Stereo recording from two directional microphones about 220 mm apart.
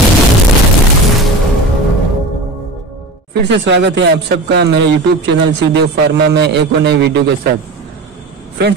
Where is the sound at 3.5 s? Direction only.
55° right (ahead or behind).